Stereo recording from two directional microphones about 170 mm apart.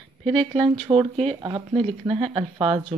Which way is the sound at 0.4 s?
35° right (ahead or behind).